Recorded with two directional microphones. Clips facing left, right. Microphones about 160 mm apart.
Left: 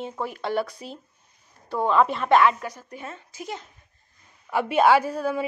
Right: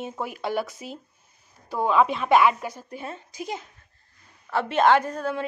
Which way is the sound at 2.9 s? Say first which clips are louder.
Right 2 dB; 30° right (ahead or behind).